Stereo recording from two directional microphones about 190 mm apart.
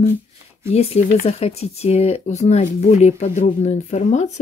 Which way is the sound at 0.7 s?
35° left (ahead or behind).